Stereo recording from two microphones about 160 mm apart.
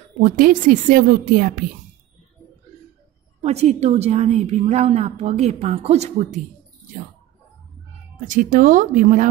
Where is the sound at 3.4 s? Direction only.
45° right (ahead or behind).